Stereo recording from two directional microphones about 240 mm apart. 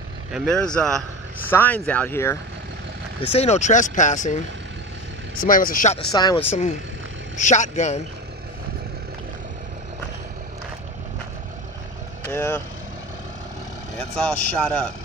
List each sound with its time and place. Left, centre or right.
0.3 s speech: centre
3.2 s speech: left
6.1 s speech: centre
7.3 s speech: left
12.3 s speech: centre
13.9 s speech: centre